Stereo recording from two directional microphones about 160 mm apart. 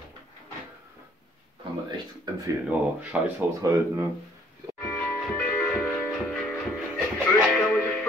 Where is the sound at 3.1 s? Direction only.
5° right (ahead or behind).